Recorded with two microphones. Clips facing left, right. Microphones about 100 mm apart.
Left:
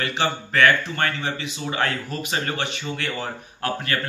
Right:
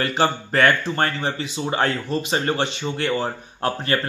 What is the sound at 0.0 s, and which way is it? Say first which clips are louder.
Speech: right 4 dB; 40° right (ahead or behind).